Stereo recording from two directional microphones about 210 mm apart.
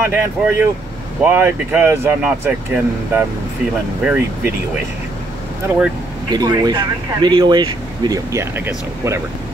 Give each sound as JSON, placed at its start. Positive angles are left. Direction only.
{"t": 0.0, "sound": "speech", "side_deg": -10}
{"t": 6.3, "sound": "speech", "side_deg": -20}